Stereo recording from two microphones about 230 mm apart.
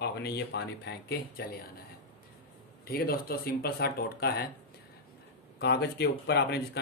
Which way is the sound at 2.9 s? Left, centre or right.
Left.